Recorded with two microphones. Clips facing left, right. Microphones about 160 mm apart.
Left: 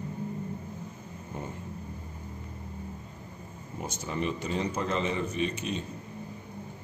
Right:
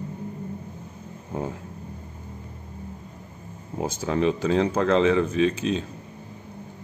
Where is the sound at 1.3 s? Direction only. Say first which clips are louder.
Right 9 dB; 90° right.